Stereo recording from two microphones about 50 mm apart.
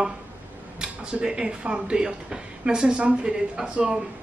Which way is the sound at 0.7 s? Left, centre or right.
Centre.